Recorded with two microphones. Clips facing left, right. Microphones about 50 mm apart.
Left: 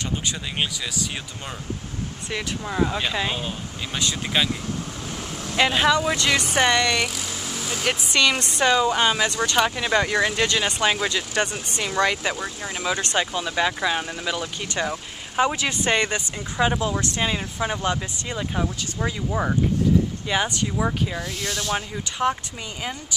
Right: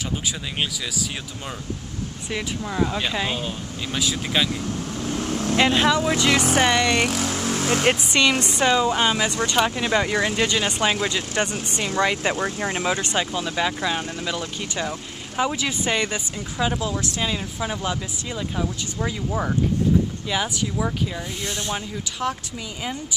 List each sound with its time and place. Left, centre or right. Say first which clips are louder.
2.6 s speech: left 1 dB; centre
5.0 s vehicle: right 7 dB; right
5.9 s speech: right 1 dB; centre
7.1 s vehicle: right 7 dB; right
8.1 s speech: right 1 dB; centre
12.4 s speech: right 5 dB; right
12.9 s speech: even; centre
16.5 s speech: left 2 dB; left
19.0 s speech: left 1 dB; centre
21.4 s speech: left 1 dB; right
21.7 s speech: left 2 dB; centre